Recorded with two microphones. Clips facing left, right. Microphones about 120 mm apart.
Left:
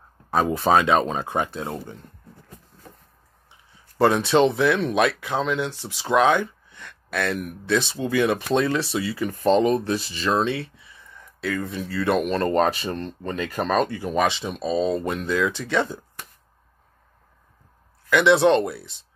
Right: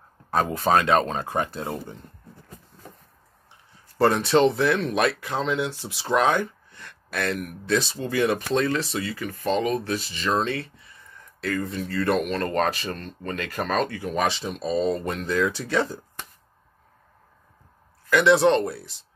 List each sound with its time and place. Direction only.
0.3 s speech: 10° left (ahead or behind)
4.0 s speech: centre (ahead or behind)
5.6 s speech: 10° right (ahead or behind)
6.0 s speech: centre (ahead or behind)
8.5 s speech: 10° left (ahead or behind)
9.4 s speech: 30° left (ahead or behind)
10.2 s speech: 5° left (ahead or behind)
12.5 s speech: 25° left (ahead or behind)
14.2 s speech: centre (ahead or behind)
18.1 s speech: centre (ahead or behind)